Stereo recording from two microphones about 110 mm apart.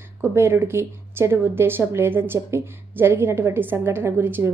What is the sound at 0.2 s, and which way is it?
Speech, 20° right (ahead or behind).